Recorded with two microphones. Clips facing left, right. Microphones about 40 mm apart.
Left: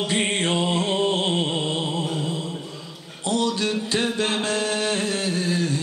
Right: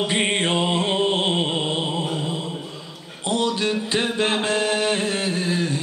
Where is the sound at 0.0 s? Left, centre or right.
Centre.